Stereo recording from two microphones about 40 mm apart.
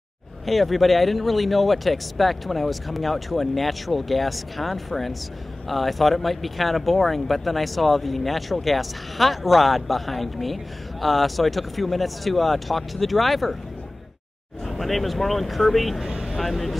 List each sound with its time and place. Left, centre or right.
0.5 s speech: centre
14.7 s speech: centre
16.1 s vehicle: centre
16.3 s speech: centre